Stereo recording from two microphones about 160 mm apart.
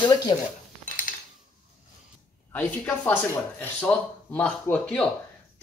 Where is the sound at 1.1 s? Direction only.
55° left (ahead or behind).